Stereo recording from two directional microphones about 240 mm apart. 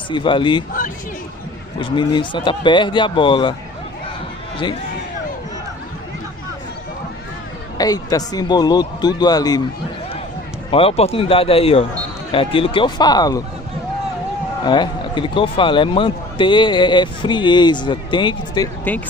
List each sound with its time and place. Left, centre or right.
0.1 s speech: centre
1.8 s speech: centre
7.7 s a man's voice: centre
10.7 s speech: left
14.6 s speech: centre